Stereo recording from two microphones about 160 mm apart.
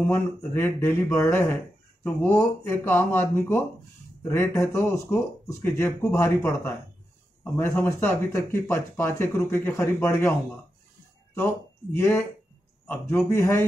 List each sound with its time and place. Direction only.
0.0 s speech: 10° left (ahead or behind)
12.8 s speech: 10° left (ahead or behind)